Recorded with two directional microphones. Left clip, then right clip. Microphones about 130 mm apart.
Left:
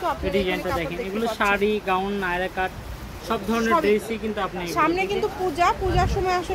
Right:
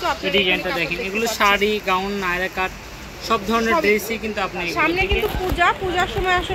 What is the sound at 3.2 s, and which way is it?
Speech, 10° right (ahead or behind).